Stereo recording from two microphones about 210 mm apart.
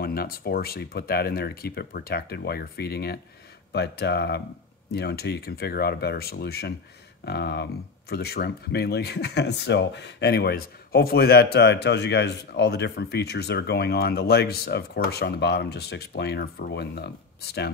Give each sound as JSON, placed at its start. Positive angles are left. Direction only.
{"t": 0.0, "sound": "speech", "side_deg": 45}